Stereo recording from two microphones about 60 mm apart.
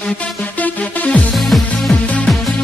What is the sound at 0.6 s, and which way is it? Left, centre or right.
Music, centre.